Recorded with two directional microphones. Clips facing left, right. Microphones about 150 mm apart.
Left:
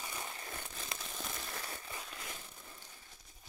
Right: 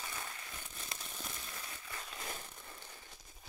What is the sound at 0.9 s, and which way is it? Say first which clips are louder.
Crumpling: left 2 dB; 90° left.